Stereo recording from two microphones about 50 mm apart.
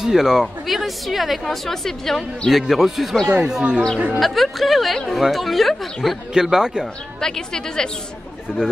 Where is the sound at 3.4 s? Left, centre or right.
Centre.